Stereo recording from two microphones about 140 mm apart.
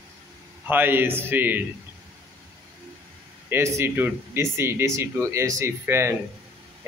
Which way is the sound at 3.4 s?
20° right (ahead or behind).